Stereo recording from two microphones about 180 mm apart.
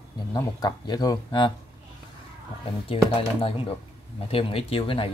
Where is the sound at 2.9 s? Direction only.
30° left (ahead or behind).